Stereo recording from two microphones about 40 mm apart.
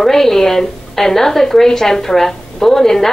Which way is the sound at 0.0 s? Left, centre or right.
Centre.